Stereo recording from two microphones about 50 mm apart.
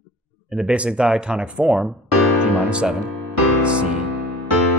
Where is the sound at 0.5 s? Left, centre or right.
Right.